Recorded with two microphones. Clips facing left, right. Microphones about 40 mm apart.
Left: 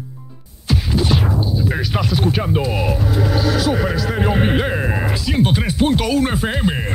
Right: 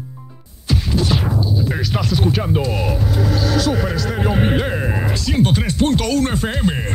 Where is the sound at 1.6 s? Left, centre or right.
Centre.